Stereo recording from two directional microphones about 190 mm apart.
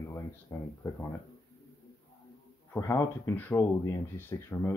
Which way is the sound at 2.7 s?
15° left (ahead or behind).